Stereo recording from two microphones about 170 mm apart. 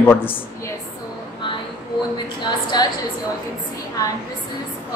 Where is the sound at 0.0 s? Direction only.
10° left (ahead or behind).